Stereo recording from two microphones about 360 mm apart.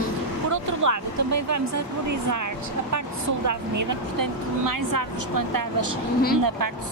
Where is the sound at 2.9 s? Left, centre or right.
Right.